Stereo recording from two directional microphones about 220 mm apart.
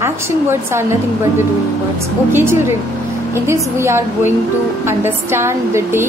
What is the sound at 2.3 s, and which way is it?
A woman's voice, 10° right (ahead or behind).